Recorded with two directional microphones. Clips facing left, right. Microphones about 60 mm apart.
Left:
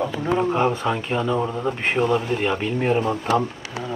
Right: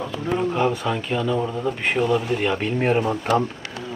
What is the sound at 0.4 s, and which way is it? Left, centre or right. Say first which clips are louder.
Speech: left 1 dB; left.